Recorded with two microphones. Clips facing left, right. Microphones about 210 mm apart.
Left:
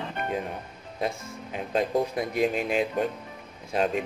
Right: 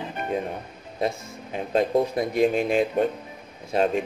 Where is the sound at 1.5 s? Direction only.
35° right (ahead or behind).